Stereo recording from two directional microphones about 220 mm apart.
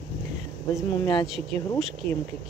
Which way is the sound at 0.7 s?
15° left (ahead or behind).